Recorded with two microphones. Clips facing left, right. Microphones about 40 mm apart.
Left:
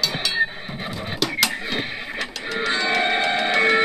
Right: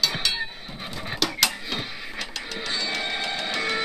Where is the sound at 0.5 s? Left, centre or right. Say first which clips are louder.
Left 6 dB; left.